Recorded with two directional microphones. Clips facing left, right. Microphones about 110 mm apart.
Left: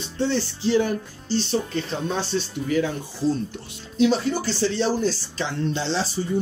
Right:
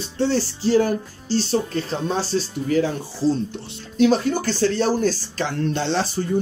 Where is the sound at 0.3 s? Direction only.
40° right (ahead or behind).